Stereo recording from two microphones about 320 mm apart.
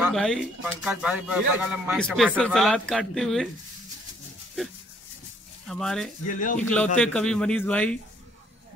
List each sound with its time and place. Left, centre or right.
0.0 s speech: centre
5.7 s speech: centre
6.2 s speech: left
6.6 s speech: centre